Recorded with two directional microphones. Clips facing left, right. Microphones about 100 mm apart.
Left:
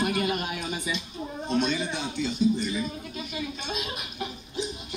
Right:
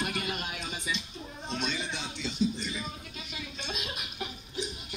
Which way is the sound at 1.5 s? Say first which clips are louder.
Left 8 dB; 45° left (ahead or behind).